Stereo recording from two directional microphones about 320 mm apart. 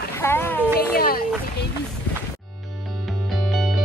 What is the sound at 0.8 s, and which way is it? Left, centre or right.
Speech, left.